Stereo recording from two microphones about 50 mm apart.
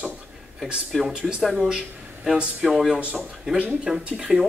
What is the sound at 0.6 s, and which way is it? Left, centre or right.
Speech, centre.